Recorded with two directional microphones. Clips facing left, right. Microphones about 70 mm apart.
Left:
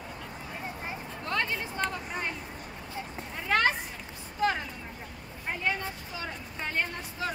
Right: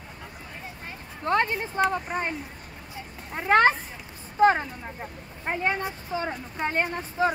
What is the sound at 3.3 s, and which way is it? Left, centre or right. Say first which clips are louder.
Speech: right 7 dB; right.